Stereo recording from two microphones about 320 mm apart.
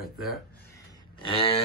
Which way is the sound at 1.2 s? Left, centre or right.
Centre.